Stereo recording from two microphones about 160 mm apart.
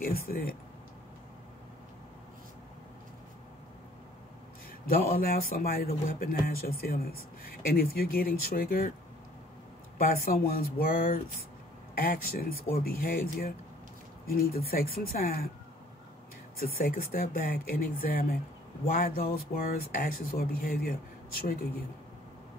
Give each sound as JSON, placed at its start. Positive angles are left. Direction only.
{"t": 0.0, "sound": "speech", "side_deg": 65}
{"t": 4.8, "sound": "speech", "side_deg": 65}
{"t": 9.9, "sound": "speech", "side_deg": 65}
{"t": 16.5, "sound": "speech", "side_deg": 65}